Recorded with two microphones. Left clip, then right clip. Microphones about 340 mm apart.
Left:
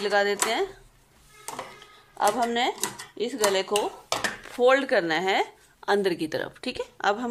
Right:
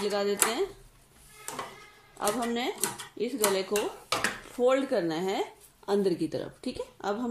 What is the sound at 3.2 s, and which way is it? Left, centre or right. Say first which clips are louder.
Speech: left 3 dB; left.